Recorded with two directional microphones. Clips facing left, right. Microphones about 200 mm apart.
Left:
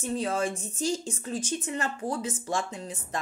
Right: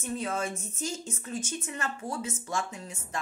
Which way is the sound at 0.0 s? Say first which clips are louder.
Left 4 dB; 35° left (ahead or behind).